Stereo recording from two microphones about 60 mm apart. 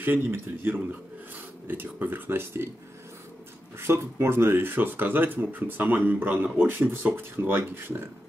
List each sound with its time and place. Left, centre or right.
0.0 s speech: right
3.7 s speech: right